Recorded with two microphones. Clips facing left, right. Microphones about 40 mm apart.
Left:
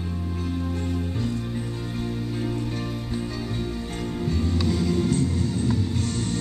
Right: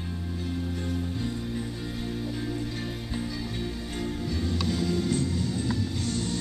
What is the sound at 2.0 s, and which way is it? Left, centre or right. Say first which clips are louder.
Music: left 4 dB; centre.